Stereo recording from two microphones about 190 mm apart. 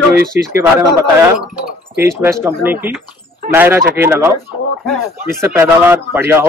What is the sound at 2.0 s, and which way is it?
A man's voice, 15° right (ahead or behind).